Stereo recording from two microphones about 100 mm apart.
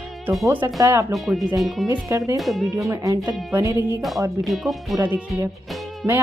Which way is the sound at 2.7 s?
30° right (ahead or behind).